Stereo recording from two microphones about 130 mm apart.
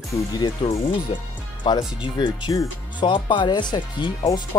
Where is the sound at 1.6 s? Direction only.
35° left (ahead or behind).